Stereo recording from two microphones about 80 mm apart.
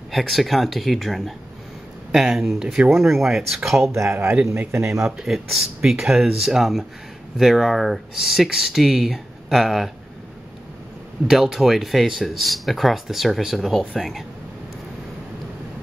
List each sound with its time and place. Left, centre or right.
0.1 s speech: centre
3.9 s speech: right
5.0 s speech: centre
11.2 s speech: centre